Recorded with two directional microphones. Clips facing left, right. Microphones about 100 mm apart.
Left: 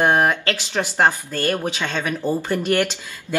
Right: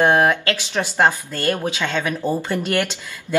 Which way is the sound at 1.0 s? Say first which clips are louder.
Right 1 dB; 20° right (ahead or behind).